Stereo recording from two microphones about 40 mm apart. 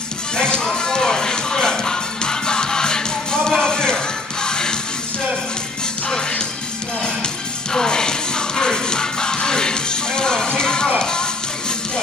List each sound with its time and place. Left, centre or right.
0.4 s music: left
6.0 s music: left
7.7 s music: centre